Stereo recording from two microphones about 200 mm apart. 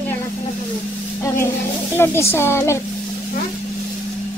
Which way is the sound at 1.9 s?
10° left (ahead or behind).